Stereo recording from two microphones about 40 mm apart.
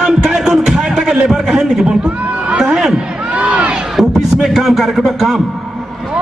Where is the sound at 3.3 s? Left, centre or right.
Right.